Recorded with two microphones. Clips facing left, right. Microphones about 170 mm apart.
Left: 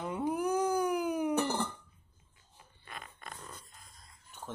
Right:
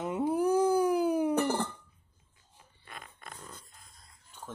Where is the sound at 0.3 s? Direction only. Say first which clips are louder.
Right 5 dB; 30° right (ahead or behind).